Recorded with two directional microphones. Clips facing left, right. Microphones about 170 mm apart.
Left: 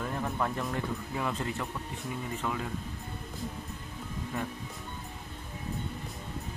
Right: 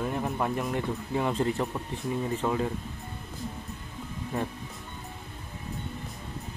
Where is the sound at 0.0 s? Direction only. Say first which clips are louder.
Right 3 dB; 20° right (ahead or behind).